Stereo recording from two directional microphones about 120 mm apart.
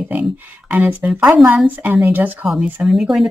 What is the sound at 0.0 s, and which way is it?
Speech, 10° right (ahead or behind).